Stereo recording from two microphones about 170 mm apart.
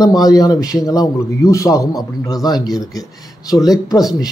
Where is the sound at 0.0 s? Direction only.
20° left (ahead or behind).